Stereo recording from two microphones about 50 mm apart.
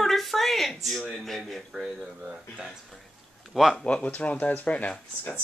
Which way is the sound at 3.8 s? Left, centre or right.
Left.